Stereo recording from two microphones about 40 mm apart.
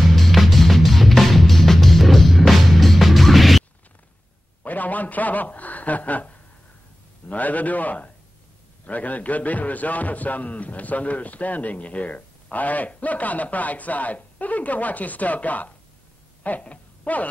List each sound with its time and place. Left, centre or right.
0.1 s music: centre
4.6 s a sound: left
7.2 s a man's voice: left